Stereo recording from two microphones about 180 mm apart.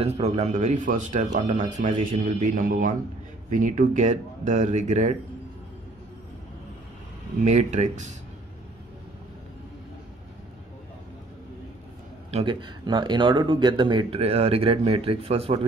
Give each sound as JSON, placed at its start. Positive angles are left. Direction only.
{"t": 0.0, "sound": "a man's voice", "side_deg": -35}
{"t": 7.4, "sound": "speech", "side_deg": -40}
{"t": 12.3, "sound": "speech", "side_deg": -30}